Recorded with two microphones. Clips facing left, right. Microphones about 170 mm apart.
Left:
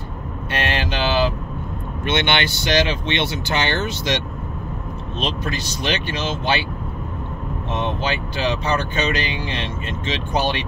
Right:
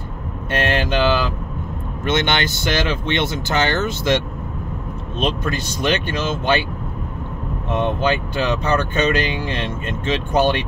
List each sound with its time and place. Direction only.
0.5 s mantra: 50° right (ahead or behind)
2.0 s speech: 45° right (ahead or behind)
5.2 s speech: 55° right (ahead or behind)
7.7 s speech: 50° right (ahead or behind)